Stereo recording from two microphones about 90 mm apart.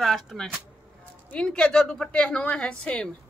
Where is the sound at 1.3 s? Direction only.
10° left (ahead or behind).